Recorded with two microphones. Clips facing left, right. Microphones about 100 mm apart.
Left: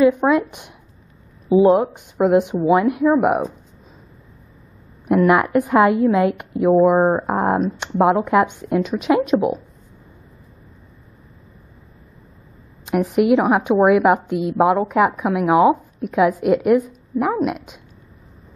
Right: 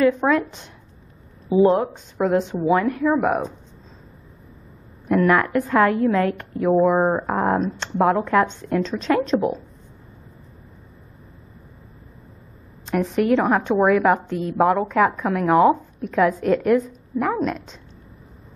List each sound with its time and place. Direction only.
0.0 s a woman's voice: 15° left (ahead or behind)
2.0 s a woman's voice: 15° left (ahead or behind)
5.0 s a woman's voice: 15° left (ahead or behind)
7.2 s a woman's voice: 15° left (ahead or behind)
12.8 s a woman's voice: 10° left (ahead or behind)